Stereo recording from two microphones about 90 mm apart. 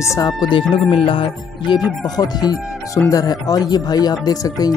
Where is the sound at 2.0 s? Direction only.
45° left (ahead or behind).